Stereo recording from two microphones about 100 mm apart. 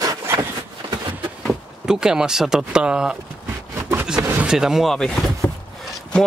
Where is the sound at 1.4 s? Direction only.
5° right (ahead or behind).